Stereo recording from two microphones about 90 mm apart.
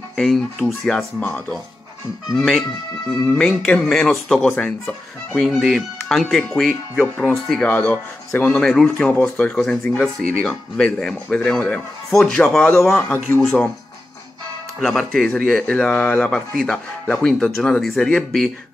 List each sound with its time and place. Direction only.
0.1 s speech: 5° left (ahead or behind)
2.2 s speech: centre (ahead or behind)
3.1 s speech: 10° left (ahead or behind)
7.6 s speech: 15° left (ahead or behind)
14.8 s speech: centre (ahead or behind)